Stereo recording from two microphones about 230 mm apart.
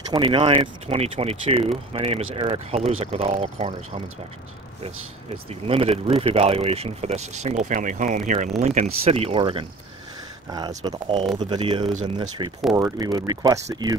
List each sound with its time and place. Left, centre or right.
0.1 s speech: right
5.5 s speech: right
10.8 s speech: centre
12.7 s speech: centre